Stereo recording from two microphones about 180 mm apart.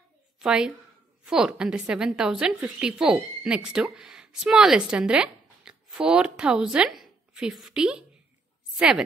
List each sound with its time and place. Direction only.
0.4 s a woman's voice: 5° right (ahead or behind)